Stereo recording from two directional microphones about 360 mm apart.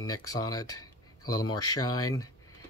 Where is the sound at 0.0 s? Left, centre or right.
Centre.